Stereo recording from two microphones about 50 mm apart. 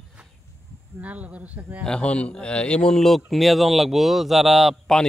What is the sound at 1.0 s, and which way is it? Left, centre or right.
Speech, right.